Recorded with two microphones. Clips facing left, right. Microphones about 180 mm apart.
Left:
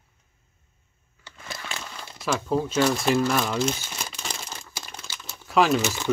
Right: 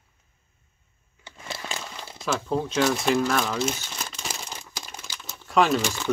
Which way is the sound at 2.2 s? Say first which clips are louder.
Left 1 dB; 5° left (ahead or behind).